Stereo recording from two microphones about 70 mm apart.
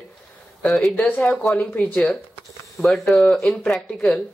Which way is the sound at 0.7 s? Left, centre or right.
Centre.